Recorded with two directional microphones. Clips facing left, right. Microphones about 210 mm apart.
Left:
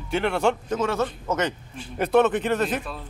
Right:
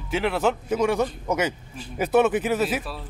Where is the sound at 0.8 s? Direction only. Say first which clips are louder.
Right 2 dB; 15° right (ahead or behind).